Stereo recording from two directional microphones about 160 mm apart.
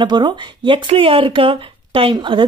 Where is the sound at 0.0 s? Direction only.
30° right (ahead or behind).